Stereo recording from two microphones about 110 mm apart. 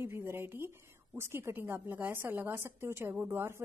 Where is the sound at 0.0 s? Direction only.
20° right (ahead or behind).